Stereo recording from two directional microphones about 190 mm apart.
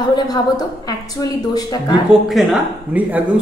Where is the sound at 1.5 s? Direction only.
20° left (ahead or behind).